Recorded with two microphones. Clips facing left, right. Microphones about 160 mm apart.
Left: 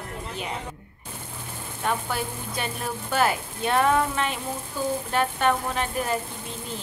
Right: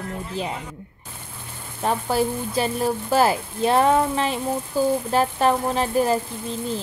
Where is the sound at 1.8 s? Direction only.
35° right (ahead or behind).